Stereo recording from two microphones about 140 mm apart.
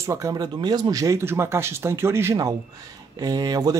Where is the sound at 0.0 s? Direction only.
20° right (ahead or behind).